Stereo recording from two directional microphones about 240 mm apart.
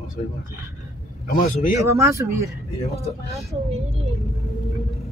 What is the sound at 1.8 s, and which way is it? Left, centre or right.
Speech, centre.